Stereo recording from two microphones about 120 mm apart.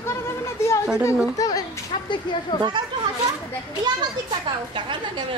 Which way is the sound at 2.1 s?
40° left (ahead or behind).